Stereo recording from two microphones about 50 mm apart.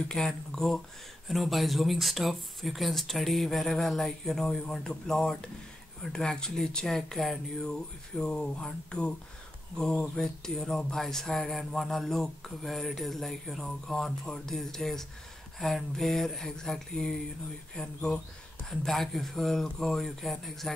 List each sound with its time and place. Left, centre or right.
0.1 s speech: centre
1.3 s speech: centre
7.7 s speech: centre
18.7 s speech: centre